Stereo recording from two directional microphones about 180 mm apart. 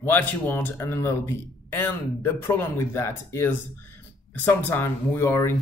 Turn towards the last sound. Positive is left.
turn(degrees=15)  # may be behind; listen again after turning